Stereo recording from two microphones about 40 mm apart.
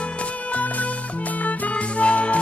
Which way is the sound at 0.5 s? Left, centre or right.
Left.